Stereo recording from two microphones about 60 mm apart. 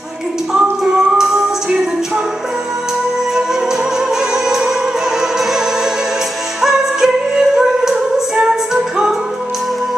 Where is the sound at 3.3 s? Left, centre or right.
Centre.